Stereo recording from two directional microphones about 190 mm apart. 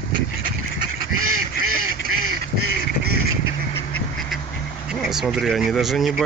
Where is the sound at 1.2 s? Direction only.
90° right.